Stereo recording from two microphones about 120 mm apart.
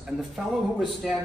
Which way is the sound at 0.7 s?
Centre (ahead or behind).